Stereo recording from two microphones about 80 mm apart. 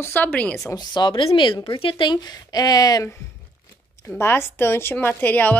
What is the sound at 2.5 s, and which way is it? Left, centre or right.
Speech, left.